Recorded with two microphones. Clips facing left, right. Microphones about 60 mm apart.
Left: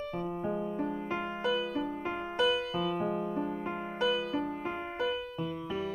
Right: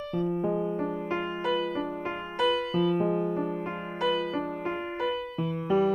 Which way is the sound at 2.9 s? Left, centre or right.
Right.